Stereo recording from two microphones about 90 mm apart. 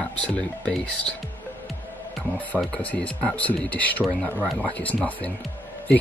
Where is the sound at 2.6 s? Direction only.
5° left (ahead or behind).